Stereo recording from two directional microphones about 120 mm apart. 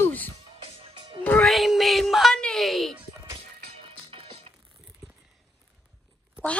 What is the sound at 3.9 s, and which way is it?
Music, 50° right (ahead or behind).